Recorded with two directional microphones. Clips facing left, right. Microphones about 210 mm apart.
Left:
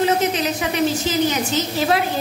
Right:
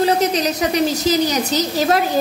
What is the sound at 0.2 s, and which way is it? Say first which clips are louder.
A woman's voice: right 3 dB; 40° right (ahead or behind).